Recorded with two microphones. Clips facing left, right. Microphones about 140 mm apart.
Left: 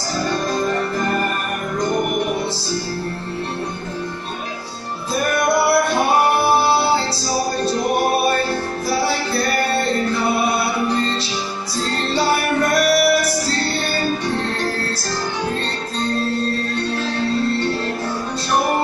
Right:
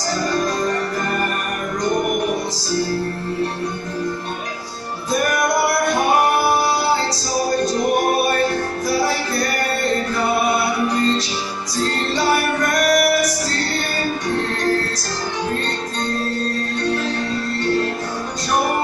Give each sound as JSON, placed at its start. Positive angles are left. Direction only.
{"t": 6.5, "sound": "music", "side_deg": 30}
{"t": 11.7, "sound": "music", "side_deg": 30}